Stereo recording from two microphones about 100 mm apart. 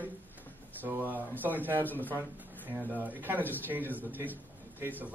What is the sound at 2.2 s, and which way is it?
A man's voice, 20° right (ahead or behind).